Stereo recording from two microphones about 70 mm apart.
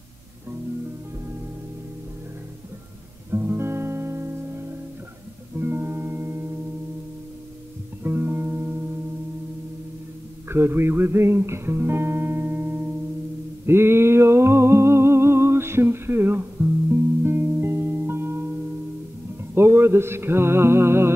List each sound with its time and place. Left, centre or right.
3.3 s guitar: right
5.6 s music: right
8.0 s music: right
10.5 s speech: right
13.7 s music: right
19.5 s music: right